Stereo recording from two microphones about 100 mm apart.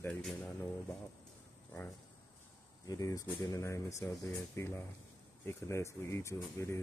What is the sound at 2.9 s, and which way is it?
Speech, 35° left (ahead or behind).